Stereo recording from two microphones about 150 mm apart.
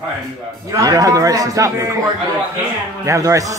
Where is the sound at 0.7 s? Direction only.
25° right (ahead or behind).